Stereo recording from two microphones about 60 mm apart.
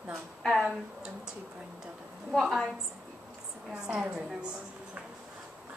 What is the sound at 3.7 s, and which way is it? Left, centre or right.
Speech, centre.